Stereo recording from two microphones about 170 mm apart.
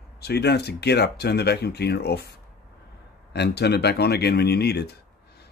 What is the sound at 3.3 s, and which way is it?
Speech, 80° left.